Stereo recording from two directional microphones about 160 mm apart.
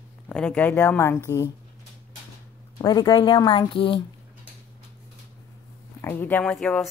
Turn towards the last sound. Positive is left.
turn(degrees=5)  # may be behind; listen again after turning